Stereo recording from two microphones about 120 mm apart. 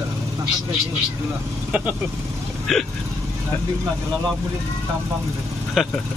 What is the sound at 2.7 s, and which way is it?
Speech, centre (ahead or behind).